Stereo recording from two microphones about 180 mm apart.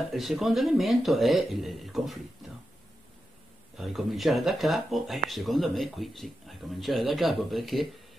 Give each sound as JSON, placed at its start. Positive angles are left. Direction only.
{"t": 0.1, "sound": "speech", "side_deg": 0}
{"t": 3.7, "sound": "speech", "side_deg": 0}